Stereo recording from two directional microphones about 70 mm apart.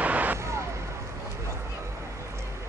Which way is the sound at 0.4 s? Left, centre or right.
Right.